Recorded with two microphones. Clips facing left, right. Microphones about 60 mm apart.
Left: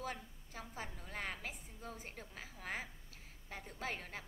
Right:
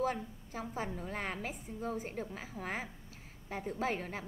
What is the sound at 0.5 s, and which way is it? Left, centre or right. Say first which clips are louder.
Speech: right 8 dB; centre.